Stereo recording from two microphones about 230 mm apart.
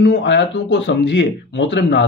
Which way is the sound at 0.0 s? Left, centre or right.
Left.